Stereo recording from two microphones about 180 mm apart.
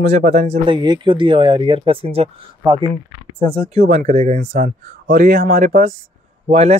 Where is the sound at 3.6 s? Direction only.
35° right (ahead or behind).